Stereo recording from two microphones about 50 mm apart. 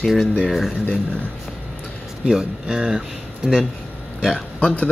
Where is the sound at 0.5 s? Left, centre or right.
Centre.